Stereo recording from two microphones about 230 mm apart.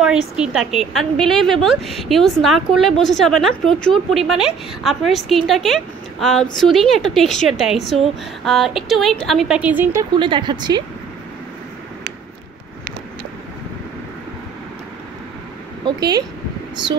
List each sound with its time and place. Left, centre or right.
0.0 s a woman's voice: centre
10.1 s speech: right
15.8 s speech: centre